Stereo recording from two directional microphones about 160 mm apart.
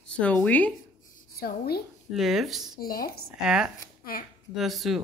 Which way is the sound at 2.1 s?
Centre (ahead or behind).